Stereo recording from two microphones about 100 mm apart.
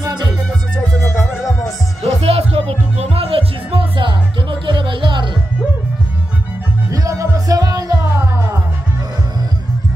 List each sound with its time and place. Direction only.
1.0 s music: 25° left (ahead or behind)
2.0 s music: 90° right; by 5.3 s 55° right (ahead or behind)
6.9 s music: 35° right (ahead or behind)